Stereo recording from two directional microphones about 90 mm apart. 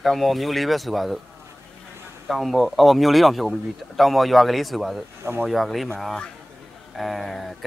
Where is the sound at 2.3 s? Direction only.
Centre (ahead or behind).